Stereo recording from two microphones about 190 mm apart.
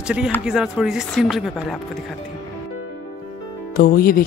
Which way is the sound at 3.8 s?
50° left (ahead or behind).